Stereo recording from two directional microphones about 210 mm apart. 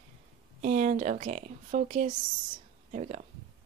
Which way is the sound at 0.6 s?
35° right (ahead or behind).